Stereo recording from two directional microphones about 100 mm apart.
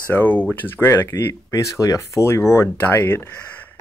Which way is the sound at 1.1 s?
35° left (ahead or behind).